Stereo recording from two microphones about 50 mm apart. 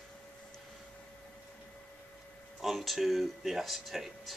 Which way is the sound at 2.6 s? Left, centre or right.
Centre.